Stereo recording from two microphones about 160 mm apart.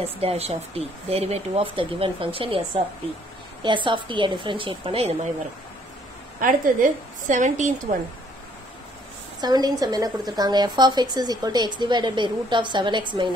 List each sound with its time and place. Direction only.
0.2 s speech: 40° right (ahead or behind)
6.4 s a woman's voice: 55° right (ahead or behind)
9.4 s a woman's voice: 25° right (ahead or behind)